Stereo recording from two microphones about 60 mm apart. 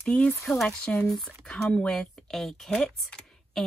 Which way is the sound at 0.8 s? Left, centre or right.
Centre.